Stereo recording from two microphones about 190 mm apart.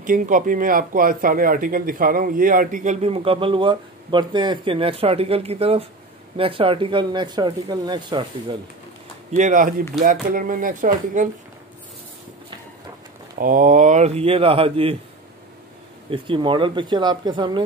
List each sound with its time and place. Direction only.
0.0 s speech: 45° right (ahead or behind); by 8.5 s 25° right (ahead or behind)
9.3 s speech: 40° right (ahead or behind)
13.4 s speech: 45° right (ahead or behind); by 15.0 s 30° right (ahead or behind)
16.1 s speech: 25° right (ahead or behind)